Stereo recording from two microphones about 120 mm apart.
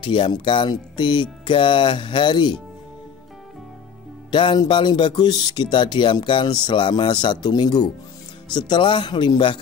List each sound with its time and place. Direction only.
0.0 s speech: 45° left (ahead or behind)
4.3 s speech: 40° left (ahead or behind)